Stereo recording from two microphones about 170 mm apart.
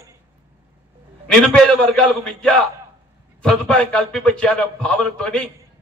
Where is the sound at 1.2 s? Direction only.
5° left (ahead or behind).